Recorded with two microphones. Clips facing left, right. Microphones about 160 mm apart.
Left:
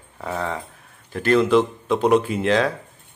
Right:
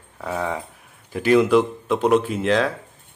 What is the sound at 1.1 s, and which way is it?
A man's voice, 10° right (ahead or behind).